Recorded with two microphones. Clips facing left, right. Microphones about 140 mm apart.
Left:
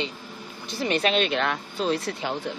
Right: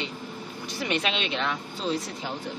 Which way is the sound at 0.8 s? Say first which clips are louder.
Left 5 dB; 40° left (ahead or behind).